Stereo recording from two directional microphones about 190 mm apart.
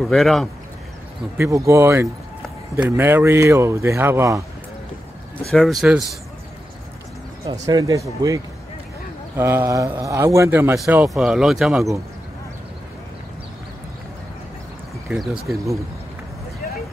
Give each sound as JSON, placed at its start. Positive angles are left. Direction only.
{"t": 0.0, "sound": "speech", "side_deg": 0}
{"t": 1.7, "sound": "a man's voice", "side_deg": -15}
{"t": 5.5, "sound": "speech", "side_deg": 0}
{"t": 7.6, "sound": "a man's voice", "side_deg": -15}
{"t": 9.4, "sound": "a man's voice", "side_deg": -15}
{"t": 15.0, "sound": "speech", "side_deg": 0}